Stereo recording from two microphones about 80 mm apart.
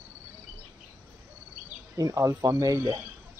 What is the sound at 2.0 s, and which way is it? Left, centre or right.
Speech, right.